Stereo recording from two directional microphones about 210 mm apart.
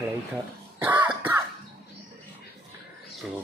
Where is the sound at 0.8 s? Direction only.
10° right (ahead or behind).